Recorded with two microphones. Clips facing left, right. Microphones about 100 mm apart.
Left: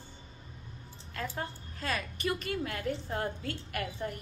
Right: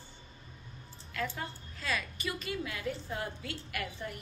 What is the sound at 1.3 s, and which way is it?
A woman's voice, 40° left (ahead or behind).